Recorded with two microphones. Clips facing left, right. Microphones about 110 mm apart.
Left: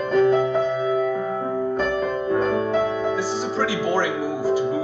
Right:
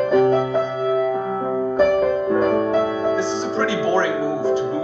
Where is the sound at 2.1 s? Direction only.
5° right (ahead or behind).